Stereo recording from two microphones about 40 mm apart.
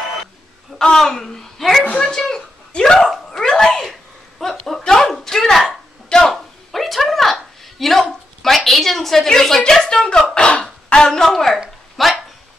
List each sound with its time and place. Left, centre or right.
0.7 s a woman's voice: centre
1.9 s speech: centre
3.3 s dog: centre
4.4 s a sound: centre
6.7 s a sound: centre
8.0 s a woman's voice: centre
10.1 s speech: left
11.1 s a woman's voice: centre
12.0 s dog: centre